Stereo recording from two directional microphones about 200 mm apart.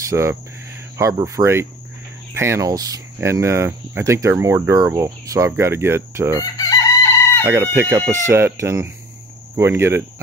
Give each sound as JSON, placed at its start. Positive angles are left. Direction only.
{"t": 0.1, "sound": "speech", "side_deg": -15}
{"t": 6.4, "sound": "chicken", "side_deg": 15}
{"t": 7.4, "sound": "speech", "side_deg": -10}